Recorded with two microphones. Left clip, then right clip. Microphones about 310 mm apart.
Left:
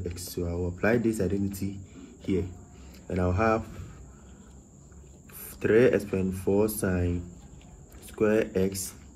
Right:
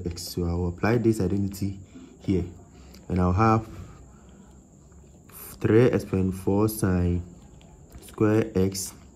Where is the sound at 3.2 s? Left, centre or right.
Right.